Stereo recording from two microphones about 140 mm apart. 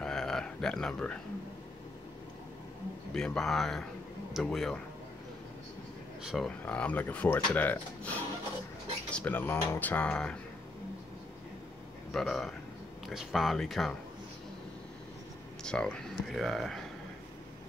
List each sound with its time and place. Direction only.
0.0 s a sound: 5° left (ahead or behind)
3.1 s speech: 5° left (ahead or behind)
6.2 s speech: centre (ahead or behind)
12.1 s speech: 5° left (ahead or behind)
15.6 s speech: 5° left (ahead or behind)